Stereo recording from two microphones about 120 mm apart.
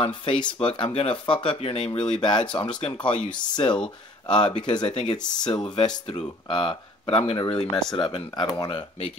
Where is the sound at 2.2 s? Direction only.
40° left (ahead or behind).